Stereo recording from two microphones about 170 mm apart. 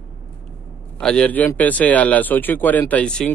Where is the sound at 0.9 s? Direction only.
5° left (ahead or behind).